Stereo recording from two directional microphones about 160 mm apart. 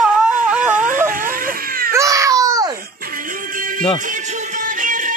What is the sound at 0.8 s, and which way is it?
Whimper, 55° right (ahead or behind).